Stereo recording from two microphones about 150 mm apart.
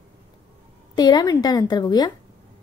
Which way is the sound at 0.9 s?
25° left (ahead or behind).